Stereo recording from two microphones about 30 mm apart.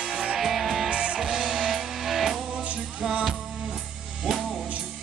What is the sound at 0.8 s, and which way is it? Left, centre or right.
Music, right.